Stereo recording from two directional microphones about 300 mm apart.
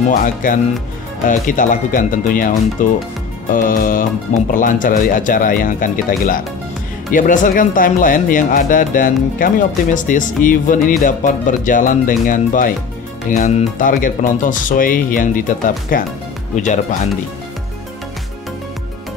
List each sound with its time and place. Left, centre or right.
0.1 s speech: left